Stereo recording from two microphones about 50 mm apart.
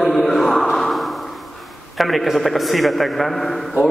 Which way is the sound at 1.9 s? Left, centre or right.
Centre.